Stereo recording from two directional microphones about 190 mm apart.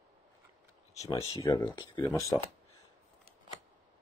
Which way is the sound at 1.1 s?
30° left (ahead or behind).